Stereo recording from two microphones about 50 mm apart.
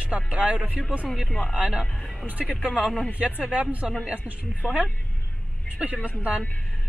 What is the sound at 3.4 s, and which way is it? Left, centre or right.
Speech, right.